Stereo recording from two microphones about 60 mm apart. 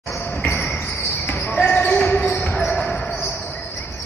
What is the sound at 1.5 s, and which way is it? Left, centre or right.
Basketball bounce, left.